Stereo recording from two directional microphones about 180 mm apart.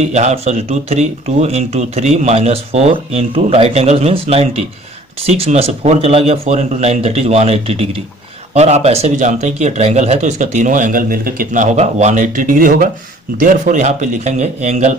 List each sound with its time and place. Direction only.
0.0 s speech: 40° right (ahead or behind)